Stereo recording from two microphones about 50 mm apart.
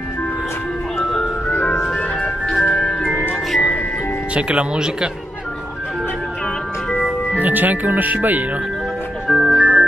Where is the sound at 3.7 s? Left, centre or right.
Left.